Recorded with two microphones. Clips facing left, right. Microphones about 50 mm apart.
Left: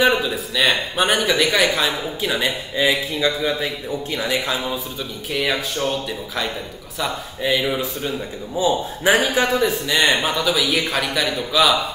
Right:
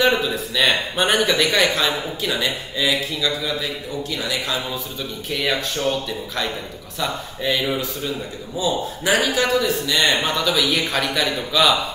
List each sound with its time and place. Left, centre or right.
0.0 s a man's voice: centre
2.2 s a man's voice: centre
5.3 s speech: centre
8.5 s a man's voice: left; by 11.8 s centre